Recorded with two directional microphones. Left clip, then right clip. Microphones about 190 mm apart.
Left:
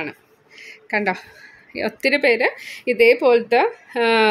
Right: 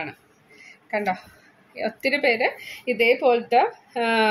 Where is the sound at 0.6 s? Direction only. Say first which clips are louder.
Left 4 dB; 50° left (ahead or behind).